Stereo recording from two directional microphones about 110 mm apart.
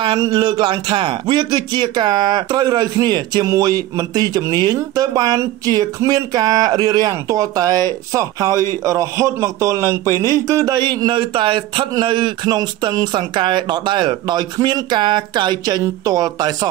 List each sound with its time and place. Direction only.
0.2 s a man's voice: 40° right (ahead or behind)